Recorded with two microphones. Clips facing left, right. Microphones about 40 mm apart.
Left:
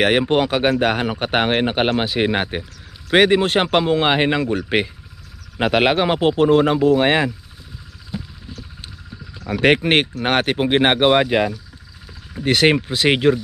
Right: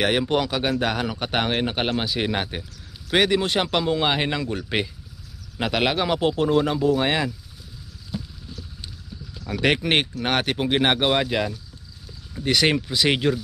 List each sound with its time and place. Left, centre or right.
0.0 s speech: left
8.1 s frog: left
9.5 s speech: left